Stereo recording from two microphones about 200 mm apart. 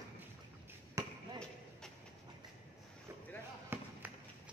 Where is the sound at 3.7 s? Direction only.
10° right (ahead or behind).